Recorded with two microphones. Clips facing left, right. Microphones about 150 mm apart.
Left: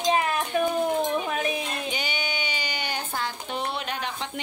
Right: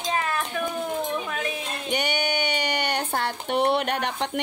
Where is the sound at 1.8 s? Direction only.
65° right (ahead or behind).